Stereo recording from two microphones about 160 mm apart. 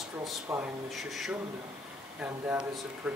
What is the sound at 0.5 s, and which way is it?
Speech, 15° right (ahead or behind).